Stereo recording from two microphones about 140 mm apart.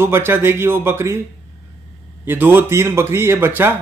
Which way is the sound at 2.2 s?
15° right (ahead or behind).